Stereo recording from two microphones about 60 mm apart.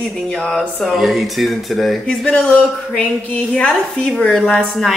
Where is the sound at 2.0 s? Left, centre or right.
Centre.